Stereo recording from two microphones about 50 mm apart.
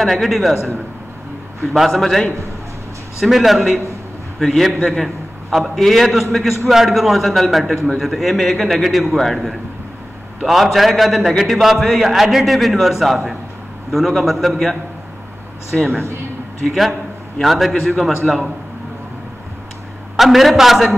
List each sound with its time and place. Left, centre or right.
0.0 s a man's voice: centre
20.2 s a man's voice: centre